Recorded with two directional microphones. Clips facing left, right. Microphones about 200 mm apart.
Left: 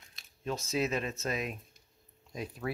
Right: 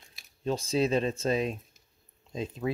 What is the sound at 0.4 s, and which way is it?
Speech, 30° right (ahead or behind).